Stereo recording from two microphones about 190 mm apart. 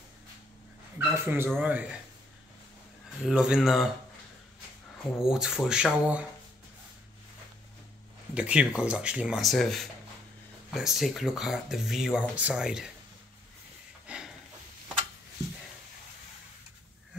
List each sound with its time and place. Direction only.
0.9 s speech: 10° right (ahead or behind)
3.3 s speech: 5° right (ahead or behind)
5.2 s speech: 5° right (ahead or behind)
8.4 s speech: 5° right (ahead or behind)
14.0 s a sound: 5° right (ahead or behind)